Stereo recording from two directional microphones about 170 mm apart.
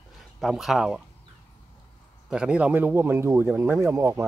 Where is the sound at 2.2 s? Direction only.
5° right (ahead or behind).